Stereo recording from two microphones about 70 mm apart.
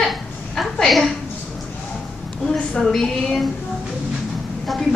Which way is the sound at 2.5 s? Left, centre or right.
Centre.